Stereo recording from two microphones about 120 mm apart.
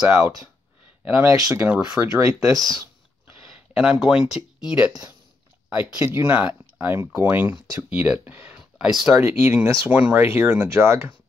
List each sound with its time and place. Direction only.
0.0 s speech: 10° right (ahead or behind)
1.3 s speech: 30° right (ahead or behind)
1.6 s speech: 10° right (ahead or behind)
2.0 s speech: 25° right (ahead or behind)
2.7 s a sound: 25° right (ahead or behind)
3.7 s speech: 5° right (ahead or behind)
6.0 s speech: 20° right (ahead or behind)
9.2 s speech: 20° right (ahead or behind)